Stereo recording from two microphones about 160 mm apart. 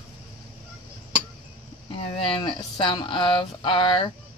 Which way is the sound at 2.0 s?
35° left (ahead or behind).